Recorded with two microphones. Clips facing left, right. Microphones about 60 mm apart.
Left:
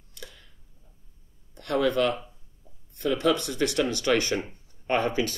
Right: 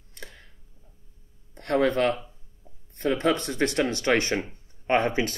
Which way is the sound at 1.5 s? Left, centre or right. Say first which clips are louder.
Right 2 dB; right.